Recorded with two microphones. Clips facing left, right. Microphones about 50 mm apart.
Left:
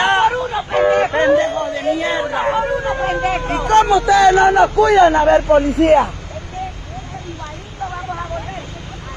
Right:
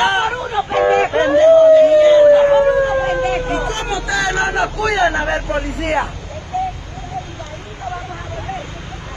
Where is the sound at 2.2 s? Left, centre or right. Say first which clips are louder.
Right 12 dB; centre.